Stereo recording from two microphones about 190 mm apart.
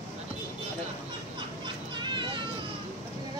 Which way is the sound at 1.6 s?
25° right (ahead or behind).